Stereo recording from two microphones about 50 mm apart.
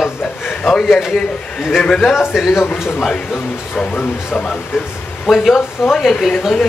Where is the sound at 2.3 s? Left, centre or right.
Centre.